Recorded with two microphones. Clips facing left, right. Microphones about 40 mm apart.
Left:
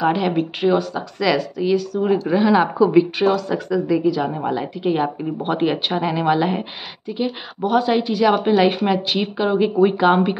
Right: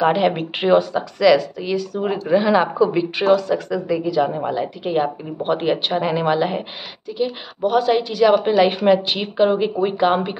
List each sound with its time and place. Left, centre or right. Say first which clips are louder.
0.0 s speech: right 2 dB; centre
0.4 s speech: right 2 dB; right
1.2 s speech: right 4 dB; centre
7.1 s speech: right 2 dB; centre
7.6 s speech: even; centre
8.6 s speech: right 2 dB; centre